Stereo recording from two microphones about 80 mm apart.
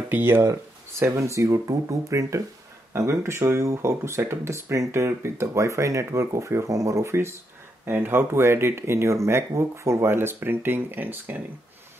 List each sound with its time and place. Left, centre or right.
0.1 s speech: right
0.4 s speech: right